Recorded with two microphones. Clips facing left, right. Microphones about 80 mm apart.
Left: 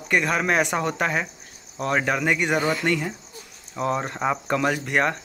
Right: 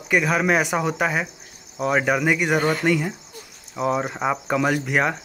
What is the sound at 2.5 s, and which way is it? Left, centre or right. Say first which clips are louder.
Speech: right 2 dB; right.